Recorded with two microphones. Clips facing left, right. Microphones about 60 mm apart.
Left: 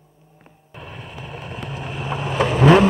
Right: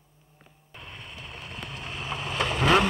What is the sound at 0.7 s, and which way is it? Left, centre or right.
Vehicle, centre.